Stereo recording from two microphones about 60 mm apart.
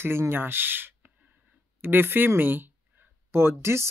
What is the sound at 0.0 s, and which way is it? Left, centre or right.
A woman's voice, right.